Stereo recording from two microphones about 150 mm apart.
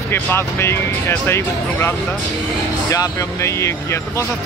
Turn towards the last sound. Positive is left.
turn(degrees=20)  # may be behind; listen again after turning